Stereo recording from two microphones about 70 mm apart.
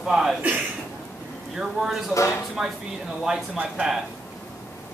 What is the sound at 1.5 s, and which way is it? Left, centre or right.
Speech, centre.